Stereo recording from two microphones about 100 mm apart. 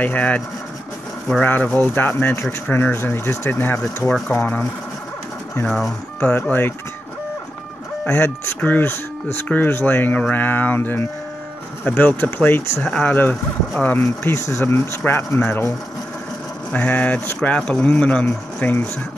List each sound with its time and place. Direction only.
0.0 s speech: 15° left (ahead or behind)
1.4 s speech: 15° left (ahead or behind)
5.7 s speech: centre (ahead or behind)
6.4 s speech: 15° left (ahead or behind)
8.0 s speech: 20° left (ahead or behind)
14.0 s speech: 30° left (ahead or behind)
16.7 s speech: 15° left (ahead or behind)